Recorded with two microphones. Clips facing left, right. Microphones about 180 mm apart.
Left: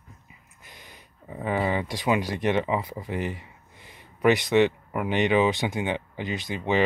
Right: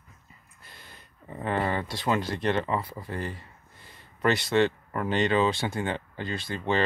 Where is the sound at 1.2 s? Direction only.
5° left (ahead or behind).